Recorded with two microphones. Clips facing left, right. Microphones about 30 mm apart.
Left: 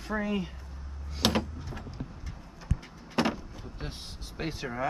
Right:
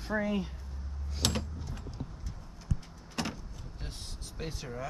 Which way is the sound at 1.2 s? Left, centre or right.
Left.